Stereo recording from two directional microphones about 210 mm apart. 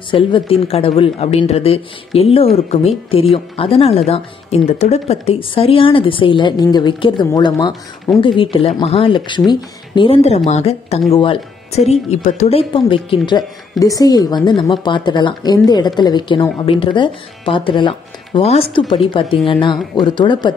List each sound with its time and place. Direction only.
0.1 s a woman's voice: 25° left (ahead or behind)